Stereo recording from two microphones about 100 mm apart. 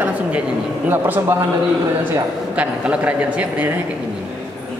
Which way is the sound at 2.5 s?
10° right (ahead or behind).